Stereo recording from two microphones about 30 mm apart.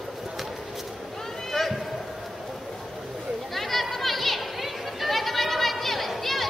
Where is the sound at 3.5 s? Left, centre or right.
Centre.